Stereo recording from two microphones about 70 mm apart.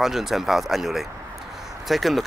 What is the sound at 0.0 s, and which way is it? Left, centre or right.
Speech, centre.